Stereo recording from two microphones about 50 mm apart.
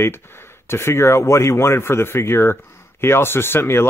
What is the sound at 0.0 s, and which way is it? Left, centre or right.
Speech, left.